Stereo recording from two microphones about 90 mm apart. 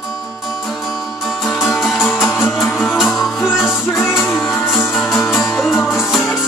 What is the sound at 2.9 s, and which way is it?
Music, centre (ahead or behind).